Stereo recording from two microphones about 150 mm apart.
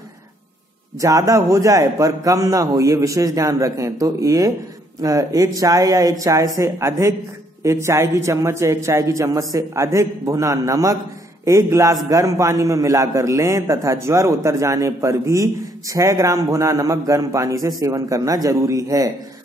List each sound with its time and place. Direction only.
1.0 s a man's voice: 20° right (ahead or behind)